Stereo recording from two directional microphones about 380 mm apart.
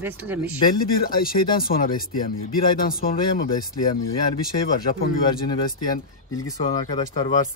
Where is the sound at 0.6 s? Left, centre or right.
Left.